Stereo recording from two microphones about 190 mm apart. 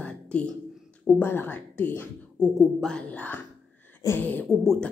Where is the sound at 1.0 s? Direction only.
10° left (ahead or behind).